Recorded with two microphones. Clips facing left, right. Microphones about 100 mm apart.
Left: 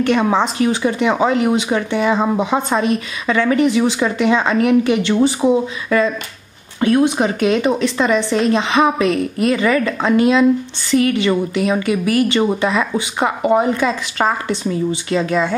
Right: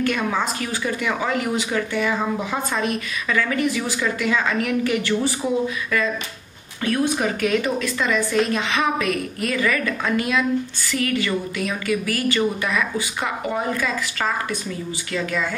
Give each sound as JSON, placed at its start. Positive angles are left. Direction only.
{"t": 0.0, "sound": "speech", "side_deg": 25}